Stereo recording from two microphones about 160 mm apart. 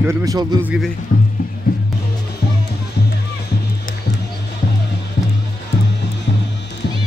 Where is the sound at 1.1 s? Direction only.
55° left (ahead or behind).